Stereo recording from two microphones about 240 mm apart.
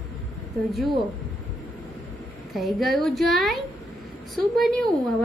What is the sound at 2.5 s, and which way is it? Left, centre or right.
A woman's voice, centre.